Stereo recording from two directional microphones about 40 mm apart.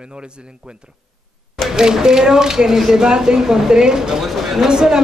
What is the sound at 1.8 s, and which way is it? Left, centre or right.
Speech, centre.